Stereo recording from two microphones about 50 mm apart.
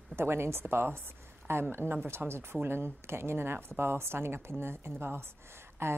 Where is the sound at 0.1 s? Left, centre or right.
Right.